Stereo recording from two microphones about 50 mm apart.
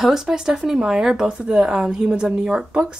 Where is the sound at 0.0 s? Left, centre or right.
Centre.